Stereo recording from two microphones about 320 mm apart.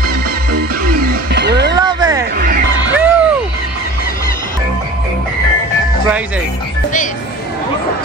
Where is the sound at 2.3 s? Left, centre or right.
Right.